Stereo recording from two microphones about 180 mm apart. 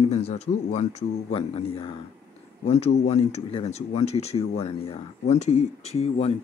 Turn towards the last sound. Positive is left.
turn(degrees=35)  # may be behind; listen again after turning